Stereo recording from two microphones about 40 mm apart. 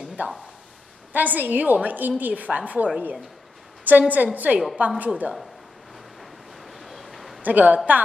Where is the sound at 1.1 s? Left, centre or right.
Right.